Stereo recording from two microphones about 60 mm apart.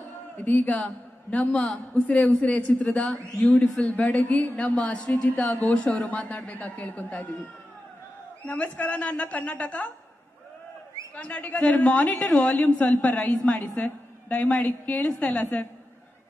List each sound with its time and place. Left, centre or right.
0.4 s a woman's voice: left
8.5 s a woman's voice: left
11.1 s a woman's voice: left